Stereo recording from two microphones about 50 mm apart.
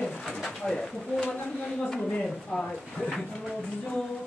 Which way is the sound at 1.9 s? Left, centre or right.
Centre.